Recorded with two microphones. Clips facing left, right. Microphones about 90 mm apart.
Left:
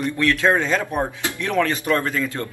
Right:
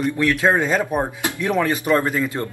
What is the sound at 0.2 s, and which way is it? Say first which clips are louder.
Speech: even; 15° right (ahead or behind).